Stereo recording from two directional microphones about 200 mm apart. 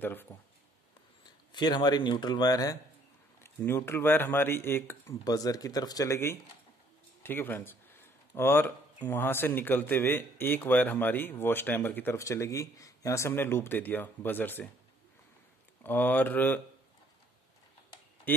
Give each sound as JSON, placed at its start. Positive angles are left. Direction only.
{"t": 0.0, "sound": "speech", "side_deg": 10}
{"t": 1.5, "sound": "speech", "side_deg": 20}
{"t": 15.8, "sound": "speech", "side_deg": 10}